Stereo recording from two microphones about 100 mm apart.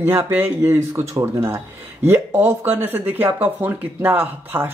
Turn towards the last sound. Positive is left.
turn(degrees=-20)  # may be behind; listen again after turning